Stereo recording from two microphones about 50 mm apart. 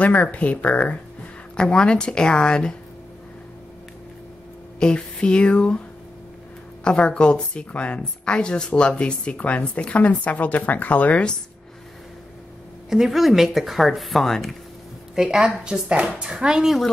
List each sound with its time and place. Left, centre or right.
0.0 s speech: left
4.7 s a woman's voice: centre
6.8 s a woman's voice: left
12.9 s speech: centre
15.1 s a woman's voice: centre